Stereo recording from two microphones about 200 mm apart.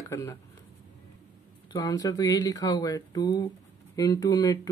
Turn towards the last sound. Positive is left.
turn(degrees=20)  # may be behind; listen again after turning